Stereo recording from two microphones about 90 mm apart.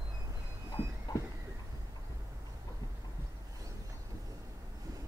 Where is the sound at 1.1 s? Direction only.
50° left (ahead or behind).